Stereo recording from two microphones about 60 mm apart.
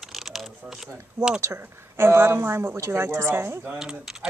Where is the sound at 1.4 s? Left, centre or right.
Right.